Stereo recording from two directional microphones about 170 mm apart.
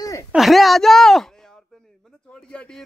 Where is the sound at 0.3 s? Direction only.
Centre (ahead or behind).